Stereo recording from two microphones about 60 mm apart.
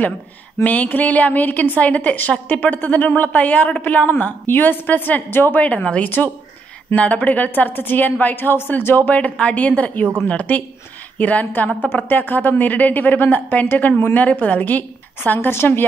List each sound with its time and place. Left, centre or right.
0.7 s a woman's voice: left